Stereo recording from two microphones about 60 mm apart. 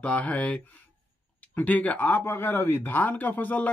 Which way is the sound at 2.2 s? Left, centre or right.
Left.